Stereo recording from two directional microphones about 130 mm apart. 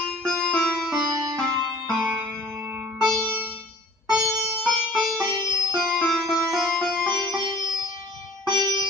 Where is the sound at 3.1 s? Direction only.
15° right (ahead or behind).